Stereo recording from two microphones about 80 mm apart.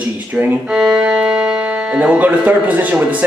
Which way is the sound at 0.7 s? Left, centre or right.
Centre.